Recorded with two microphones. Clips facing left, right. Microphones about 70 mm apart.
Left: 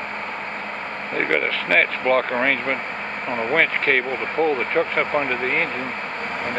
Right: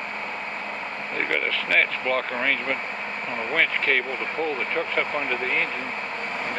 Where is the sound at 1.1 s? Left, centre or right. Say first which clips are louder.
Left 5 dB; left.